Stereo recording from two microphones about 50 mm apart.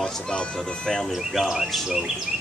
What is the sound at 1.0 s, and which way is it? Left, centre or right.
Speech, centre.